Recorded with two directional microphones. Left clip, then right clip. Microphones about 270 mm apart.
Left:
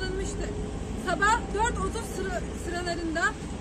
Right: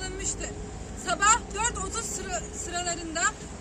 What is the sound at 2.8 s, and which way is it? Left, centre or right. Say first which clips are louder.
Speech: left 2 dB; centre.